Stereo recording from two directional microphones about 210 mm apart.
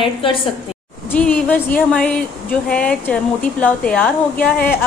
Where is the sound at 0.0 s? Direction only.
25° left (ahead or behind).